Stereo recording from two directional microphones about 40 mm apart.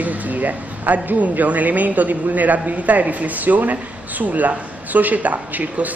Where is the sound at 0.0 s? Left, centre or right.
Right.